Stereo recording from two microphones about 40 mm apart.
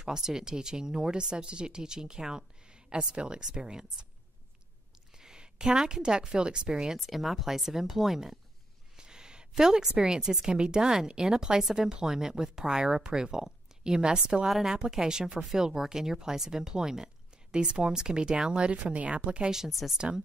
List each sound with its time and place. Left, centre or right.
0.0 s speech: centre
5.1 s a woman's voice: centre
7.0 s speech: centre
8.9 s a sound: centre
9.6 s speech: centre
19.8 s speech: centre